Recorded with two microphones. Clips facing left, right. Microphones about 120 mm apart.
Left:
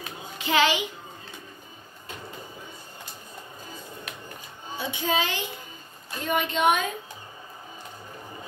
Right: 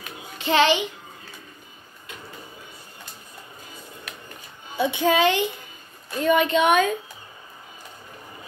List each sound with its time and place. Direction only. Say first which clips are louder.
0.4 s a child's voice: right 4 dB; 30° right (ahead or behind)
4.7 s speech: right 7 dB; 70° right (ahead or behind)
6.2 s a woman's voice: right 5 dB; 85° right